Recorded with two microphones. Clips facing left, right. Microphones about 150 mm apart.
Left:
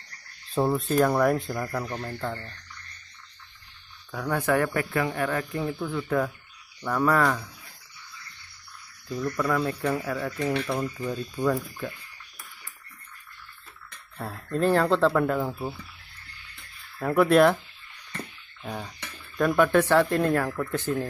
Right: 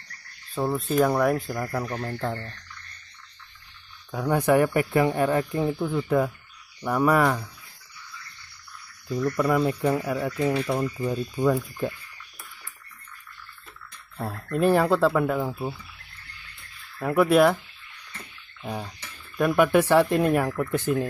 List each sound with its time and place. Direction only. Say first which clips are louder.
0.7 s speech: right 2 dB; centre (ahead or behind); by 2.5 s 20° right (ahead or behind)
4.1 s speech: right 4 dB; 15° right (ahead or behind)
9.4 s speech: right 3 dB; 15° right (ahead or behind)
14.1 s speech: right 2 dB; 15° right (ahead or behind)
17.0 s speech: even; centre (ahead or behind)
18.6 s bathtub: right 2 dB; 5° right (ahead or behind)
19.3 s speech: right 1 dB; 10° right (ahead or behind)